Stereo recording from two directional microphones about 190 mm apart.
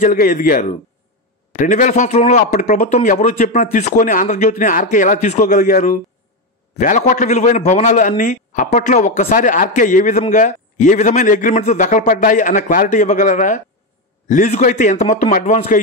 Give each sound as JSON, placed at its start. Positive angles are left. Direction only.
{"t": 0.0, "sound": "a man's voice", "side_deg": 45}